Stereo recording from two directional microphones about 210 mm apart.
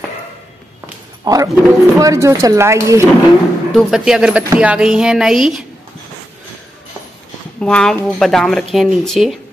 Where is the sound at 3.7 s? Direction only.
Centre (ahead or behind).